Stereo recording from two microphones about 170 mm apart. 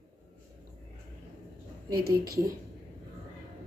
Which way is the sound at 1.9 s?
65° right (ahead or behind).